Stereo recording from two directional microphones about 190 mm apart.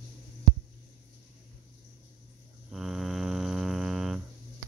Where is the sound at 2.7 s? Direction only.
Centre (ahead or behind).